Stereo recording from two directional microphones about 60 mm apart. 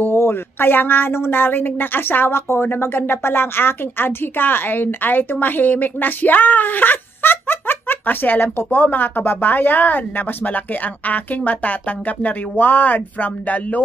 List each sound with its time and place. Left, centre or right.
0.0 s speech: left